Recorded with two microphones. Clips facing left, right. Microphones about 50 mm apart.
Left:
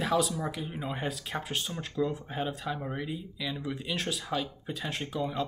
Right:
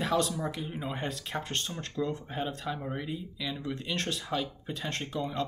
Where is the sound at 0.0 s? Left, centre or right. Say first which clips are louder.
Left 1 dB; centre.